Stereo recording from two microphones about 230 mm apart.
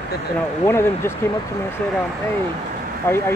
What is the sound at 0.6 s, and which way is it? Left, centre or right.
Speech, centre.